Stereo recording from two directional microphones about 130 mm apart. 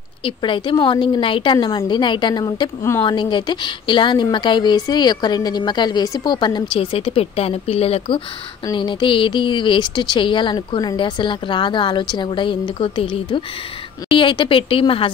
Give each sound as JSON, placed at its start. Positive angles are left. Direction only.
{"t": 0.2, "sound": "speech", "side_deg": 40}
{"t": 3.0, "sound": "speech", "side_deg": 35}
{"t": 8.7, "sound": "speech", "side_deg": 40}